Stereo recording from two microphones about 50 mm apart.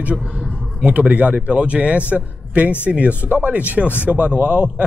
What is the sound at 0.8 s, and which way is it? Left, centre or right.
Speech, right.